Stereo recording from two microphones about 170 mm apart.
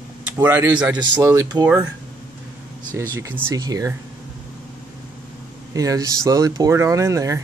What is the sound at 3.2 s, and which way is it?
Speech, 15° right (ahead or behind).